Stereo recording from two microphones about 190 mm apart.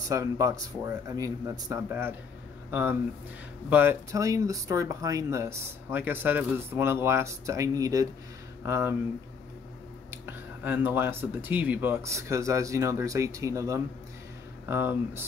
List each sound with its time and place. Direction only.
0.1 s speech: 15° right (ahead or behind)
10.1 s speech: 10° right (ahead or behind)